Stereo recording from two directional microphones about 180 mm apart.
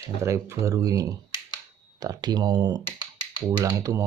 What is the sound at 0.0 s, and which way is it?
Speech, 15° right (ahead or behind).